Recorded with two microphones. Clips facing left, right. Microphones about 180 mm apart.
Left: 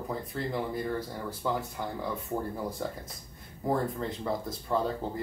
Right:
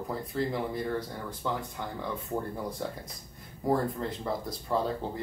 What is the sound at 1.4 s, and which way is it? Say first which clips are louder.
Speech: left 2 dB; 10° left (ahead or behind).